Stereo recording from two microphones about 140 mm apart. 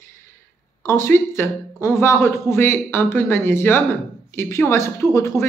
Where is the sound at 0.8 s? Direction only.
20° left (ahead or behind).